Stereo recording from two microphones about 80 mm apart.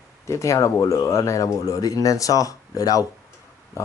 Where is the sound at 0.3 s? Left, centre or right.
Left.